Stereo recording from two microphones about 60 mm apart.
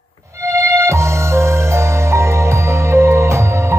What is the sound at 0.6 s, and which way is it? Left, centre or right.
Music, right.